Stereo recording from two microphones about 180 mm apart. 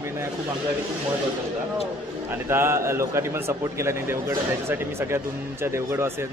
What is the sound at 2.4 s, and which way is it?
A man's voice, 15° right (ahead or behind).